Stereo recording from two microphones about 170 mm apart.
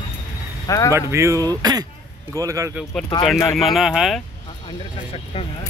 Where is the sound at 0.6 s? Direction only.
20° left (ahead or behind).